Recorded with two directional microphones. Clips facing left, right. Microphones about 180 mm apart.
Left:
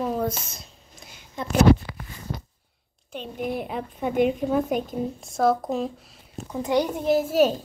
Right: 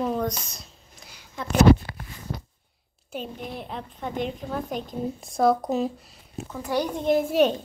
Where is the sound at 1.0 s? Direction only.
20° left (ahead or behind).